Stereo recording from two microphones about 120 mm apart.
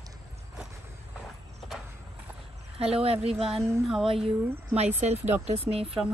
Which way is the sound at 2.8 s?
55° right (ahead or behind).